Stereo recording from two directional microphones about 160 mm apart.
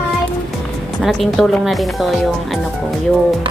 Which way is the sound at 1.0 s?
Centre (ahead or behind).